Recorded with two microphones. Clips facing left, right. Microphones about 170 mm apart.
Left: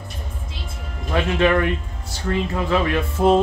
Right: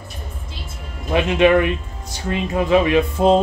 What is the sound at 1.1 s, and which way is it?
Speech, 15° right (ahead or behind).